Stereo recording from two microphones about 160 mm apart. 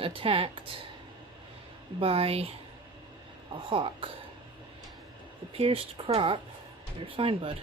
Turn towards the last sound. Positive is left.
turn(degrees=-35)  # may be behind; listen again after turning